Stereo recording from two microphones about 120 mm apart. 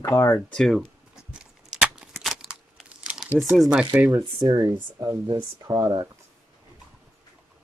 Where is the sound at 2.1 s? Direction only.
Centre (ahead or behind).